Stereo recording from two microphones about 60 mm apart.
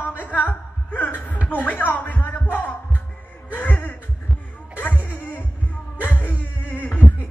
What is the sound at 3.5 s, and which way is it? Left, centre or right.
Chuckle, left.